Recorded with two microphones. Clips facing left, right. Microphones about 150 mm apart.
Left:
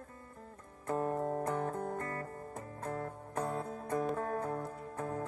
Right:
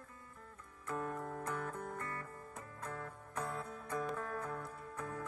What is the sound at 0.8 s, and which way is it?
Music, 40° left (ahead or behind).